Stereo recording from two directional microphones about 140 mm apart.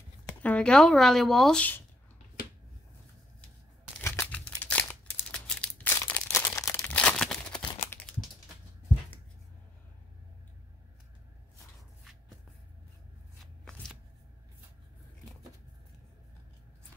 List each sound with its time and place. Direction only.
0.3 s speech: 10° left (ahead or behind)
4.0 s a sound: 15° left (ahead or behind)
5.5 s crumpling: 10° left (ahead or behind)
6.9 s crumpling: 10° left (ahead or behind)
12.0 s shuffle: centre (ahead or behind)
13.4 s shuffling cards: centre (ahead or behind)